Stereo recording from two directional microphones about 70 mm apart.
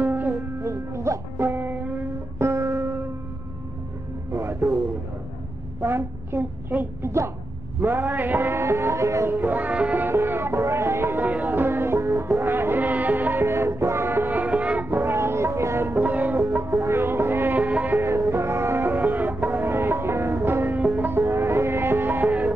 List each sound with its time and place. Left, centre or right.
0.0 s music: right
0.6 s music: right
4.3 s music: right
5.8 s a woman's voice: right
7.0 s music: right
7.8 s music: right
9.3 s music: right
10.0 s music: right
15.9 s music: right
18.0 s music: right